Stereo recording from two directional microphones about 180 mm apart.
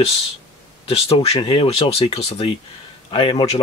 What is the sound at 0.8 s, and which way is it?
Speech, 35° left (ahead or behind).